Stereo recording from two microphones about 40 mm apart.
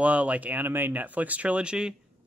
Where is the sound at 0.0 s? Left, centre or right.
Right.